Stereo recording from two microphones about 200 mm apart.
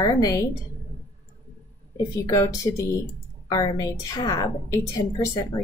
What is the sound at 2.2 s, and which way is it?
A woman's voice, 15° left (ahead or behind).